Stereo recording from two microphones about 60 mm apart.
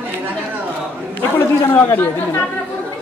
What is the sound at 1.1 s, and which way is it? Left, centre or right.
Speech, left.